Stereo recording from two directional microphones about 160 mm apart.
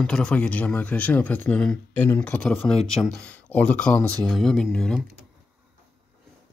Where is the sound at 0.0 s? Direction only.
5° left (ahead or behind).